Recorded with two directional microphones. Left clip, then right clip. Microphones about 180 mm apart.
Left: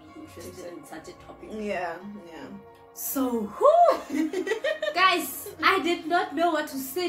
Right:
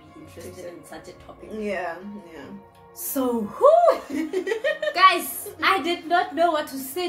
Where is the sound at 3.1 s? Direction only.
20° right (ahead or behind).